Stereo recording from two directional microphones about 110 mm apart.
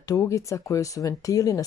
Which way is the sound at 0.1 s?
30° left (ahead or behind).